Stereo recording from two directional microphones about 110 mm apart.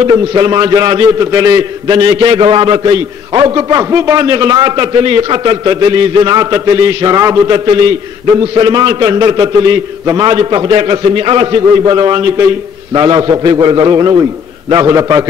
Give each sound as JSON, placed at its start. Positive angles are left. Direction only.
{"t": 0.1, "sound": "a man's voice", "side_deg": -40}
{"t": 1.2, "sound": "a man's voice", "side_deg": -30}
{"t": 1.9, "sound": "a man's voice", "side_deg": -45}
{"t": 5.5, "sound": "a man's voice", "side_deg": -40}
{"t": 7.4, "sound": "a man's voice", "side_deg": -45}
{"t": 10.3, "sound": "a man's voice", "side_deg": -45}